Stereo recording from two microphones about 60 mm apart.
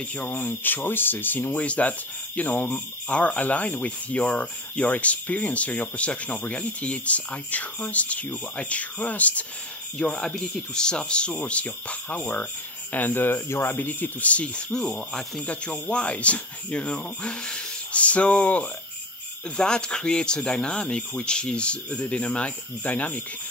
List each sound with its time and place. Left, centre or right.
0.3 s speech: left
9.9 s speech: centre
15.4 s speech: left
19.5 s speech: centre